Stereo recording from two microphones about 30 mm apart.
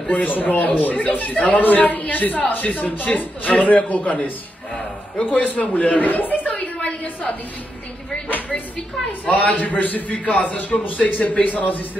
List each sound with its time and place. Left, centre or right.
0.1 s a woman's voice: left
5.2 s a woman's voice: left
9.2 s a woman's voice: left